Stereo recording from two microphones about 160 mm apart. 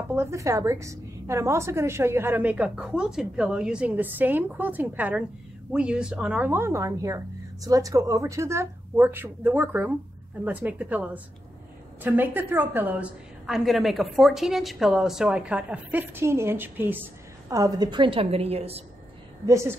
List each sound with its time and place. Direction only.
0.1 s a woman's voice: 15° right (ahead or behind); by 18.8 s 40° right (ahead or behind)
19.4 s a woman's voice: 15° right (ahead or behind)